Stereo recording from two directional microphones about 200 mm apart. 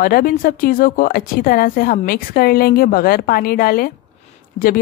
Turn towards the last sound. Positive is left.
turn(degrees=45)  # may be behind; listen again after turning